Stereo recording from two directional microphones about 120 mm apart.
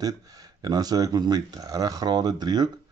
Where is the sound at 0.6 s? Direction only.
35° right (ahead or behind).